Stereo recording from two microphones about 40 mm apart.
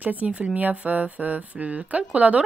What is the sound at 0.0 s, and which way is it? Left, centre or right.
Speech, right.